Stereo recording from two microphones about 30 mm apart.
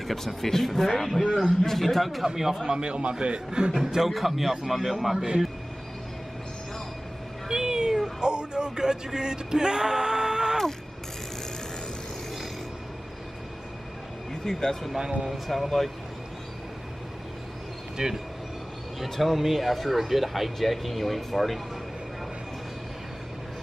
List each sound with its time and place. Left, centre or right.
0.0 s a man's voice: centre
2.2 s speech: centre
2.8 s a man's voice: right
3.8 s a man's voice: centre
4.1 s a man's voice: centre
7.4 s cat: right
8.2 s music: right
14.4 s speech: centre
15.4 s a man's voice: centre
18.0 s a man's voice: right
19.0 s a man's voice: centre